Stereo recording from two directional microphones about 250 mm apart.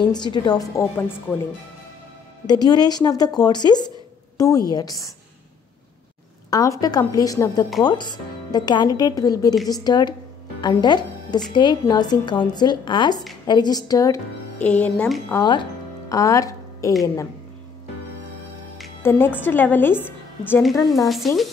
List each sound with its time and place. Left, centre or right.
0.1 s a woman's voice: centre
2.4 s a woman's voice: centre
6.5 s a woman's voice: centre
18.8 s a woman's voice: centre